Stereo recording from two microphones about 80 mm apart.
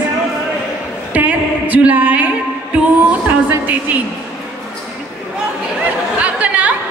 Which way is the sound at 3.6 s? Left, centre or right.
Centre.